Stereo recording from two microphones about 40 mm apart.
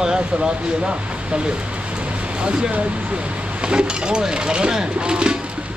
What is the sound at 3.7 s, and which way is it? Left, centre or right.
Speech, right.